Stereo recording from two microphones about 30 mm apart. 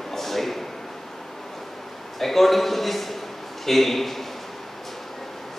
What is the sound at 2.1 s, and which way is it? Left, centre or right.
A man's voice, centre.